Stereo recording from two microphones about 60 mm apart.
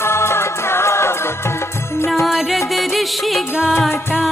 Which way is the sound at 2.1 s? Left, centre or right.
Centre.